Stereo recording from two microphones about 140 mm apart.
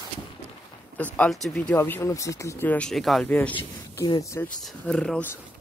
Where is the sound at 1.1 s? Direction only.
5° left (ahead or behind).